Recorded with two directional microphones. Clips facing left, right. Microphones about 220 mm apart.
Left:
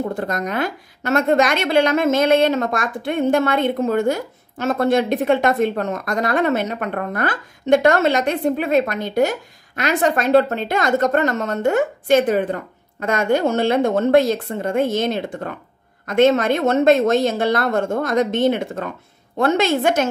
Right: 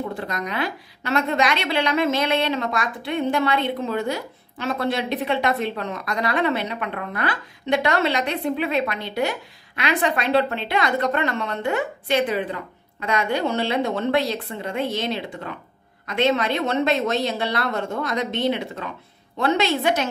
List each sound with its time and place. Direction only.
0.0 s a woman's voice: 45° left (ahead or behind)